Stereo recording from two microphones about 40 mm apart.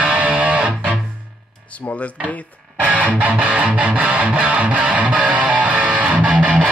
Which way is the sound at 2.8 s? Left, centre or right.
Right.